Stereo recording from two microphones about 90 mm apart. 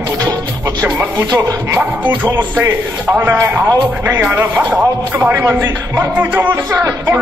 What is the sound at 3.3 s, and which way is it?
Speech, 30° right (ahead or behind).